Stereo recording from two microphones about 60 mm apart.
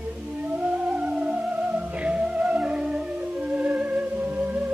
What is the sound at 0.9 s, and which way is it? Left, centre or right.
Music, right.